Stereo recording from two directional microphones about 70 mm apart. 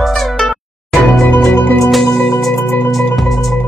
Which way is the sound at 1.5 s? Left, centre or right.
Left.